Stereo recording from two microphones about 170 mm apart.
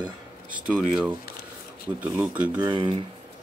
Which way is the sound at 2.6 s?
25° right (ahead or behind).